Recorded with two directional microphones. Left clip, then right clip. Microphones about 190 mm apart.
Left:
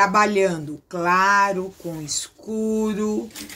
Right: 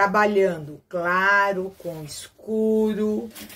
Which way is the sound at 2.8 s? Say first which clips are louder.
Right 1 dB; 35° left (ahead or behind).